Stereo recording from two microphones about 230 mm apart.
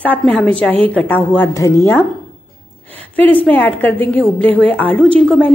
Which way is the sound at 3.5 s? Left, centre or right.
Centre.